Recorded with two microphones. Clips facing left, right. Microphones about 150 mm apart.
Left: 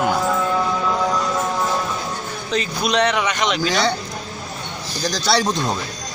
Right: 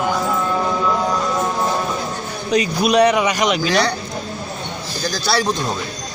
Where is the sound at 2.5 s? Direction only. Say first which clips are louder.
Right 5 dB; 10° right (ahead or behind).